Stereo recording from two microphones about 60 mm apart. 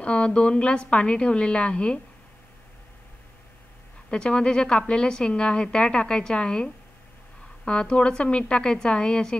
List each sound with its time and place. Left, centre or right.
0.0 s a woman's voice: centre
4.1 s a woman's voice: centre